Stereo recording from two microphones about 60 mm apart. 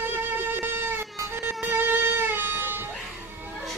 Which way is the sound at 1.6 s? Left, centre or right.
Right.